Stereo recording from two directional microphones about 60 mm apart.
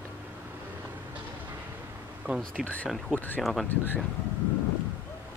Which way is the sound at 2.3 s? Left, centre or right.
Right.